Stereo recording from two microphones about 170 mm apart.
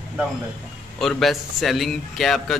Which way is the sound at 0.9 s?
Centre (ahead or behind).